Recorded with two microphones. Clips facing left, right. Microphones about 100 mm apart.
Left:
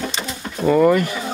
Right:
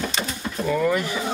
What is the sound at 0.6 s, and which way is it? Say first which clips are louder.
Speech: left 8 dB; 55° left (ahead or behind).